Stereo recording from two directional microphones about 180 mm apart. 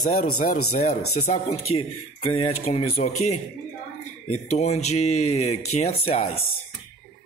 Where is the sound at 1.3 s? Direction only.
35° left (ahead or behind).